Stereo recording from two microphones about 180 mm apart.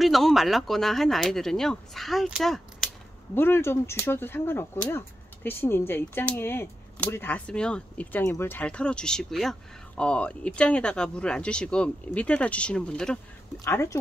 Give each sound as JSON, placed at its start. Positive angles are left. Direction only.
{"t": 0.0, "sound": "speech", "side_deg": 0}
{"t": 3.3, "sound": "speech", "side_deg": 10}
{"t": 13.7, "sound": "speech", "side_deg": 15}